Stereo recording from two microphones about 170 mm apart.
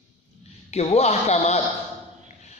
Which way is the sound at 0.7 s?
40° left (ahead or behind).